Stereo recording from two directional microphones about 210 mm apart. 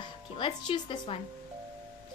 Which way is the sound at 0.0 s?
20° left (ahead or behind).